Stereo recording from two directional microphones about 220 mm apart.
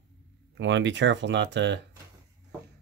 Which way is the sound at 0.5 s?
55° right (ahead or behind).